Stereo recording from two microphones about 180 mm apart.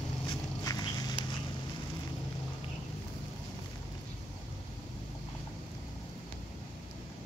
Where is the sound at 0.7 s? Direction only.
20° left (ahead or behind).